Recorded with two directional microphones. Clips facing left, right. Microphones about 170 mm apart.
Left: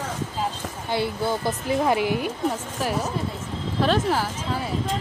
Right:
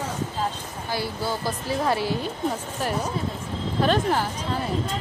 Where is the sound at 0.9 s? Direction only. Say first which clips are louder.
Left 3 dB; 20° left (ahead or behind).